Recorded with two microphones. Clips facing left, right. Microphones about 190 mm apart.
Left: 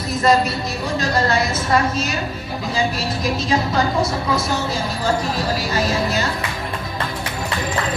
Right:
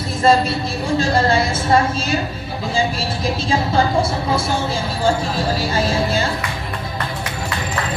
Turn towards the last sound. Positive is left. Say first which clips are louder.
# right 1 dB
turn(degrees=-30)  # may be behind; listen again after turning